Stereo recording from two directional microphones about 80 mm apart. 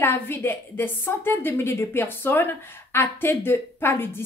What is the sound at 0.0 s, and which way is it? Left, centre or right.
A woman's voice, left.